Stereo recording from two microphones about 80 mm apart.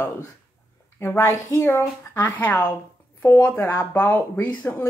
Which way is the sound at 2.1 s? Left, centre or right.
Left.